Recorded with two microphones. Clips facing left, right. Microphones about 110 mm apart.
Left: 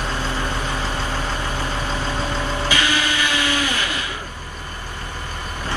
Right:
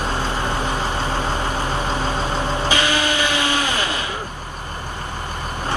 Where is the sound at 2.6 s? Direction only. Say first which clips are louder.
Right 1 dB; 20° right (ahead or behind).